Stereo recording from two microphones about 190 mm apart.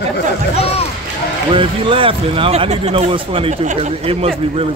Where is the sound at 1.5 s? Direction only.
25° right (ahead or behind).